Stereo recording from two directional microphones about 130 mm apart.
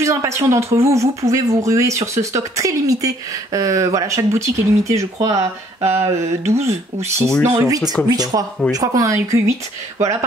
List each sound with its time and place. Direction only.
0.0 s speech: 20° right (ahead or behind)
5.3 s speech: 55° right (ahead or behind)
7.5 s speech: 30° right (ahead or behind)